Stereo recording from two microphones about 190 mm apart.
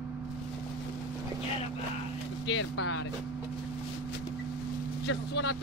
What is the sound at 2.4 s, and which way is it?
Speech, 70° left (ahead or behind).